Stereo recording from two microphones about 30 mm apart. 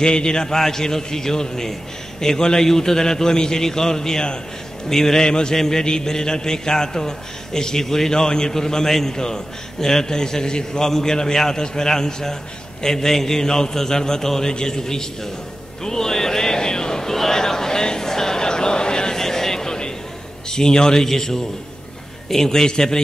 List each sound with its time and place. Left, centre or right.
0.0 s a man's voice: left
10.9 s a man's voice: centre
15.8 s music: centre
19.1 s vehicle: centre
20.4 s a man's voice: left